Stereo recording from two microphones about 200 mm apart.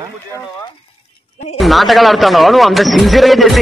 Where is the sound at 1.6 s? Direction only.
Centre (ahead or behind).